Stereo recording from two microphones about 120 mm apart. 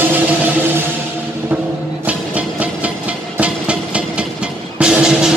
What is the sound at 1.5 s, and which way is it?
Music, 15° right (ahead or behind).